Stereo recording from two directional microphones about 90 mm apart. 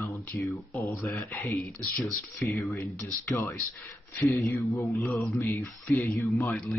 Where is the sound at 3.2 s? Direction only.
30° left (ahead or behind).